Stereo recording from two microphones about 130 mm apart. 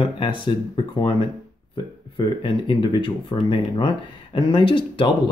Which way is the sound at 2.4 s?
40° left (ahead or behind).